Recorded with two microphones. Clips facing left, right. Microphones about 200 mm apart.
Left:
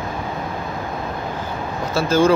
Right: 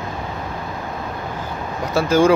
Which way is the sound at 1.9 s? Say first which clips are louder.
Right 1 dB; 15° right (ahead or behind).